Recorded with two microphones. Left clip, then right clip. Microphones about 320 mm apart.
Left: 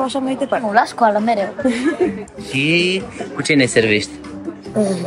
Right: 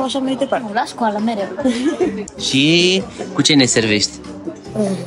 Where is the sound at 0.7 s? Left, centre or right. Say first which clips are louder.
Left 5 dB; centre.